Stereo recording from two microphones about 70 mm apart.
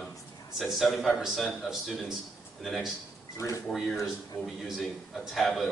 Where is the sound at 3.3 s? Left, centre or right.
Left.